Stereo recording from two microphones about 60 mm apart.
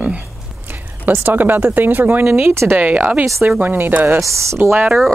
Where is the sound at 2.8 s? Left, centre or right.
Right.